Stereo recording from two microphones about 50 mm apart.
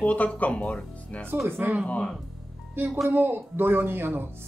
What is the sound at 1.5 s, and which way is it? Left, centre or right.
Speech, right.